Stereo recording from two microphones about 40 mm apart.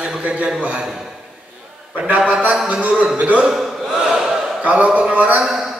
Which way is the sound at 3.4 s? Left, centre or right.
Centre.